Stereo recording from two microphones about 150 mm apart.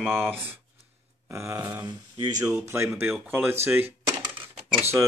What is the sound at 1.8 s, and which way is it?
Speech, 30° right (ahead or behind).